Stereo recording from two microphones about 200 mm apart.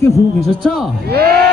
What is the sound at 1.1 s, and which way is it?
Speech, 50° right (ahead or behind).